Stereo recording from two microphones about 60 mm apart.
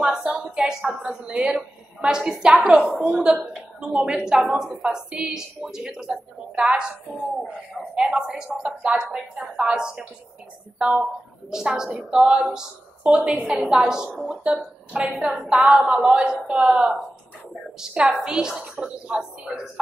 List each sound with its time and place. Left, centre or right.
0.2 s a woman's voice: centre